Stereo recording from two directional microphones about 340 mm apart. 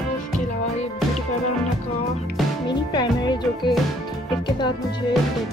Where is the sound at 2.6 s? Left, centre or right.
Centre.